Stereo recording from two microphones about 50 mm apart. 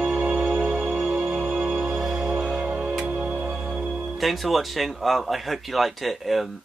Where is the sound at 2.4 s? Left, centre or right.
Centre.